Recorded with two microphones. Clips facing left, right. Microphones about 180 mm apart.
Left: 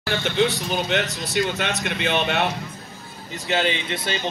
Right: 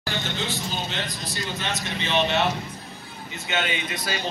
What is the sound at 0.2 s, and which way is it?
A man's voice, 65° left (ahead or behind).